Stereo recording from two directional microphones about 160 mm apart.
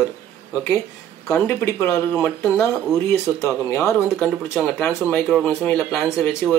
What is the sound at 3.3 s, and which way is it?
Speech, 20° left (ahead or behind).